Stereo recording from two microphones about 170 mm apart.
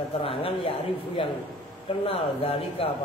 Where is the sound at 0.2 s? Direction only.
35° left (ahead or behind).